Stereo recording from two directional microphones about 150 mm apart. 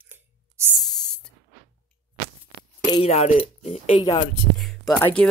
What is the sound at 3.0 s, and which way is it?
Speech, 45° left (ahead or behind).